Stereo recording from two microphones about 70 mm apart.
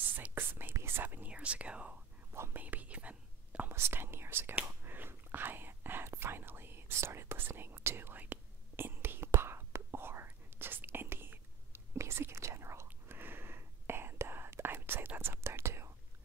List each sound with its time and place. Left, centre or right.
0.0 s whispering: right
3.7 s speech: right
4.6 s whispering: right
12.8 s whispering: right